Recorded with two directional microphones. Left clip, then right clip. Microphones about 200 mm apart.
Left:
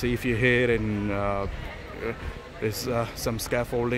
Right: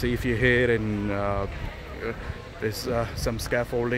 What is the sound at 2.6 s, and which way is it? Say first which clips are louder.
Speech: even; 10° left (ahead or behind).